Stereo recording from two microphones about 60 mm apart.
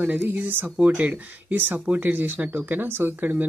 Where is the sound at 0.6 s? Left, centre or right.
Right.